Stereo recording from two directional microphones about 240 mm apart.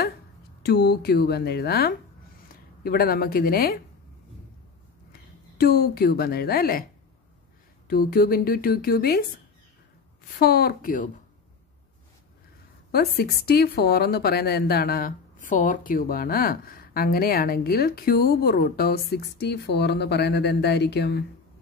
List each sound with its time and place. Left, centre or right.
0.6 s speech: left
5.6 s speech: left
7.9 s speech: left
10.4 s speech: left
12.9 s speech: left